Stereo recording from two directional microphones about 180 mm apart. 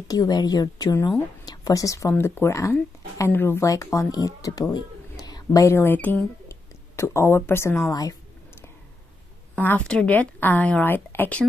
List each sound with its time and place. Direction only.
0.1 s a woman's voice: 20° left (ahead or behind)
9.6 s speech: 10° left (ahead or behind)